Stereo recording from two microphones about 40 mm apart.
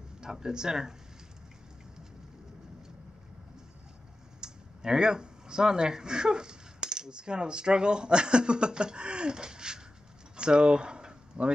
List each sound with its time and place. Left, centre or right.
0.2 s speech: centre
4.4 s speech: centre
10.3 s a sound: right